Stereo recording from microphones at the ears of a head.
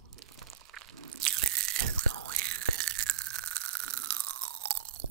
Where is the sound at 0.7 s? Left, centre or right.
Right.